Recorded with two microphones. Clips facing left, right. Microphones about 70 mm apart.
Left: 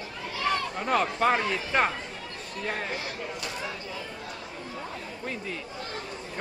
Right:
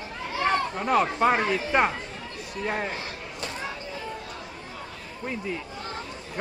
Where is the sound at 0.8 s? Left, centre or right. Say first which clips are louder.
Right 2 dB; centre.